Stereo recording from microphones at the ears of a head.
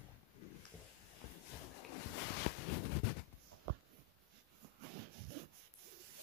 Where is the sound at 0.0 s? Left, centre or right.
Left.